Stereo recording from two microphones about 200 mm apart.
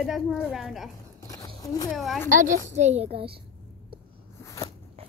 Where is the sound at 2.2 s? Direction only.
40° right (ahead or behind).